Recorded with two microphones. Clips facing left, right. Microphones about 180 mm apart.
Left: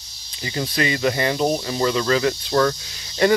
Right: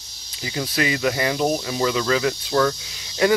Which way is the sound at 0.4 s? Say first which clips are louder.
Left 1 dB; 5° right (ahead or behind).